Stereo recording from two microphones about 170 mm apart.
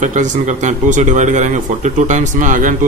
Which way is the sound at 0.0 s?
45° right (ahead or behind).